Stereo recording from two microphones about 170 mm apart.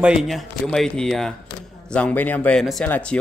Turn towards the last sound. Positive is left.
turn(degrees=5)  # may be behind; listen again after turning